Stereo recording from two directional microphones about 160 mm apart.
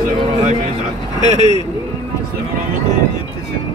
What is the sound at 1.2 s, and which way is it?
Speech, 45° right (ahead or behind).